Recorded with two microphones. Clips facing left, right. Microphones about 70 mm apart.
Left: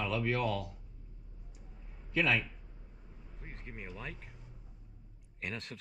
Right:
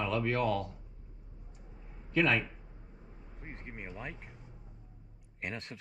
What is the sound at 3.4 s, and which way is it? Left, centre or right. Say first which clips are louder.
Speech: right 2 dB; right.